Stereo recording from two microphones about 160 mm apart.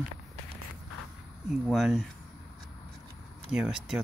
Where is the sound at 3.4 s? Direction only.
5° right (ahead or behind).